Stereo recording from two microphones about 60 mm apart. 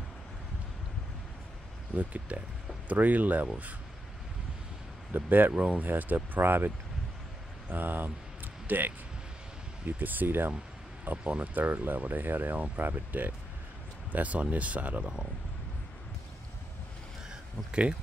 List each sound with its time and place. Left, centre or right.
2.0 s speech: right
5.1 s speech: right
5.5 s speech: centre
5.8 s speech: right
7.7 s speech: right
11.2 s speech: right
17.3 s a sound: centre